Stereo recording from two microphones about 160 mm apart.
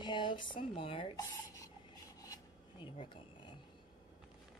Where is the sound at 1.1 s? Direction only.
20° left (ahead or behind).